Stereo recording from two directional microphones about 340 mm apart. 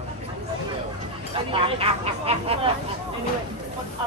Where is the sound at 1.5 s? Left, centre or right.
Centre.